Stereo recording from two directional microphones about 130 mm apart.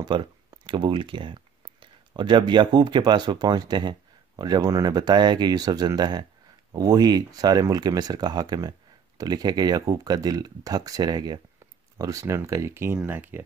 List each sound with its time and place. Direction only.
0.0 s speech: 35° right (ahead or behind); by 13.4 s 15° right (ahead or behind)